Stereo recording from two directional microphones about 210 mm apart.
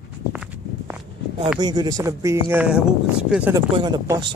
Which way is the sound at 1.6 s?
20° right (ahead or behind).